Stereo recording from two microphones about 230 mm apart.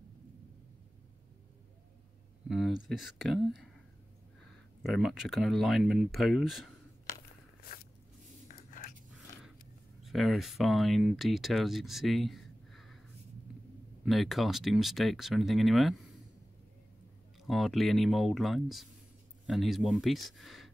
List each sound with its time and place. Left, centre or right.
2.4 s speech: centre
4.8 s speech: centre
7.6 s a sound: left
10.0 s speech: centre
14.0 s speech: centre
17.4 s speech: centre